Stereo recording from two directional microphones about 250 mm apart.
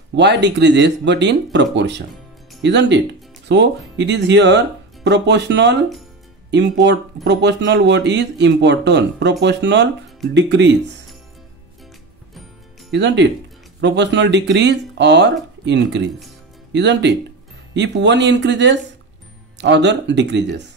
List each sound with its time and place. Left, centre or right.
0.1 s speech: right
12.9 s speech: right